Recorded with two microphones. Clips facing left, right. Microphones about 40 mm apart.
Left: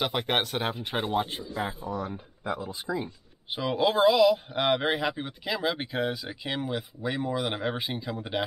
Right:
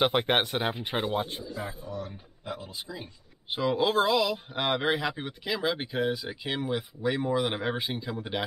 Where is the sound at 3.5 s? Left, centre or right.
Centre.